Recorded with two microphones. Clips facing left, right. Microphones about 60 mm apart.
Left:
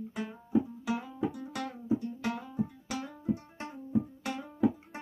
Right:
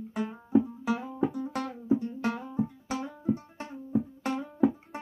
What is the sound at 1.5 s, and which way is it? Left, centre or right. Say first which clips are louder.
Music: right 5 dB; right.